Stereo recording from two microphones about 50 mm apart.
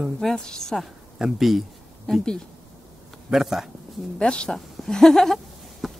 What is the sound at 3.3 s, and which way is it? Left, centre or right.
Speech, centre.